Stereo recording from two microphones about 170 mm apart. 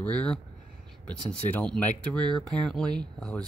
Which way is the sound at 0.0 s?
10° left (ahead or behind).